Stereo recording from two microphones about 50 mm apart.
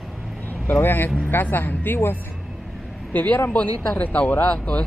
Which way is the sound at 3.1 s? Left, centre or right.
Left.